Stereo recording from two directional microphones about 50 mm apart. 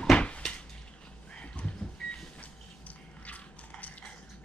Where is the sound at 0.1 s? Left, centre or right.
Centre.